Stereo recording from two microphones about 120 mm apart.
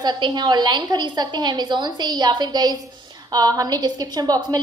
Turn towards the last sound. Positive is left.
turn(degrees=-35)  # may be behind; listen again after turning